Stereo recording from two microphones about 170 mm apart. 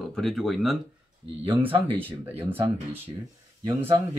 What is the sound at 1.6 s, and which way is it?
Speech, 10° right (ahead or behind).